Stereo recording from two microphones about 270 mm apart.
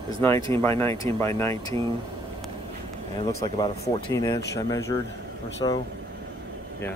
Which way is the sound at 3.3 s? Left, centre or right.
Centre.